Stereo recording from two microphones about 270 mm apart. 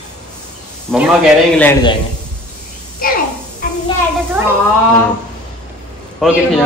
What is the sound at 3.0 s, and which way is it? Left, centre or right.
Speech, left.